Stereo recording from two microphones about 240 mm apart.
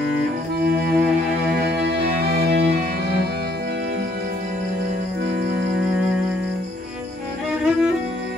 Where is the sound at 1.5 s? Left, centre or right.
Right.